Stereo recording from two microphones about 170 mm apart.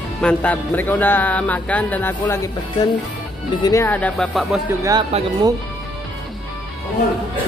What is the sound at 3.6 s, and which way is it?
Speech, 15° left (ahead or behind).